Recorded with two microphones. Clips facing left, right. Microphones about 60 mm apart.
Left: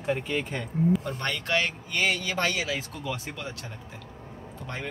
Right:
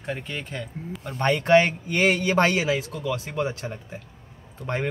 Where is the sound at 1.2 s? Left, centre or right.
Right.